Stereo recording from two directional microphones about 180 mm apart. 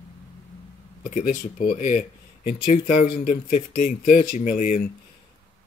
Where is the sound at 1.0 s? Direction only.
45° left (ahead or behind).